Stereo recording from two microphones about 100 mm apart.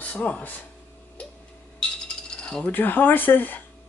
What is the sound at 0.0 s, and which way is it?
Speech, 15° left (ahead or behind).